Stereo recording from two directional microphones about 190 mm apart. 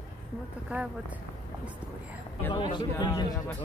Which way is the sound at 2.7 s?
20° left (ahead or behind).